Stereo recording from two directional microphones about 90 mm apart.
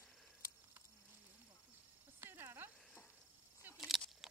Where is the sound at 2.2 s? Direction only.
25° right (ahead or behind).